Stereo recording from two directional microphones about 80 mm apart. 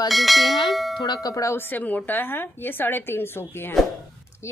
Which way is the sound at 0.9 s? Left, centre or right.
Left.